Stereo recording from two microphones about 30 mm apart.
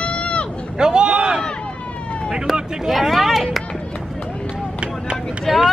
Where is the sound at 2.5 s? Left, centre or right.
Right.